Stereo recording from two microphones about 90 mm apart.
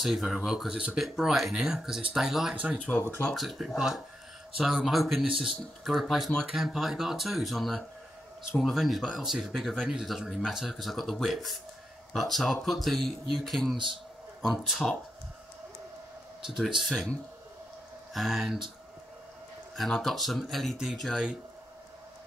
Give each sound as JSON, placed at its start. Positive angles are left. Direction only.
{"t": 0.0, "sound": "speech", "side_deg": 0}
{"t": 3.0, "sound": "speech", "side_deg": 25}
{"t": 3.3, "sound": "speech", "side_deg": 0}
{"t": 16.4, "sound": "speech", "side_deg": -5}
{"t": 18.1, "sound": "speech", "side_deg": 0}
{"t": 19.7, "sound": "speech", "side_deg": 0}